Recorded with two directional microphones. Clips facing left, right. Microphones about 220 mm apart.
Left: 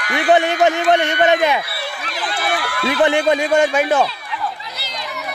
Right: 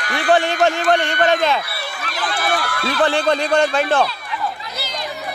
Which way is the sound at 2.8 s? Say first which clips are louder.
Left 4 dB; 20° left (ahead or behind).